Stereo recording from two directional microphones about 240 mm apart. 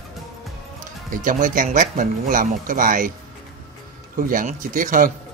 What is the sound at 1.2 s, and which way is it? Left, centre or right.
Speech, right.